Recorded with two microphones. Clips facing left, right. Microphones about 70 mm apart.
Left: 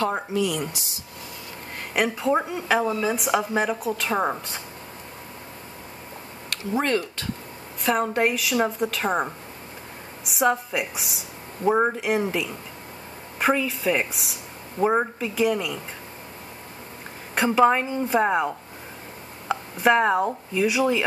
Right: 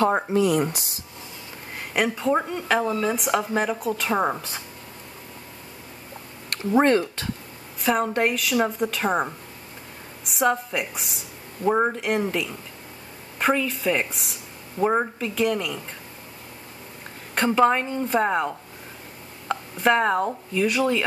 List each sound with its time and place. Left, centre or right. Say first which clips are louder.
0.3 s speech: right 5 dB; right
2.0 s a woman's voice: even; centre
6.5 s speech: right 5 dB; right
7.8 s a woman's voice: even; centre
17.4 s a woman's voice: left 1 dB; centre